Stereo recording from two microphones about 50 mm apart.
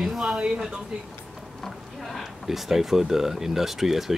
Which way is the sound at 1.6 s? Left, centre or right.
Centre.